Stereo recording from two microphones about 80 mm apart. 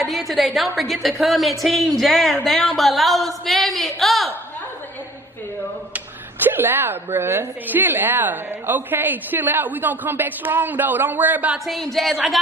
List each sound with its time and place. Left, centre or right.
0.0 s a woman's voice: centre
5.9 s a woman's voice: right
11.5 s a woman's voice: centre